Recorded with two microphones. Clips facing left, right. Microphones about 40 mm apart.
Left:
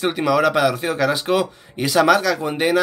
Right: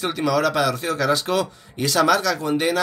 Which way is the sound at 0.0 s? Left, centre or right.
Centre.